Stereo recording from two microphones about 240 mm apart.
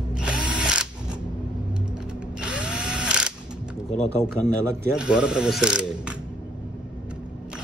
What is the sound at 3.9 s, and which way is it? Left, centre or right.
Speech, left.